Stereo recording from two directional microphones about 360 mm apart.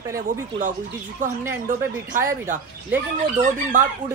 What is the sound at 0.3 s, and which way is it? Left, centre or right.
Speech, right.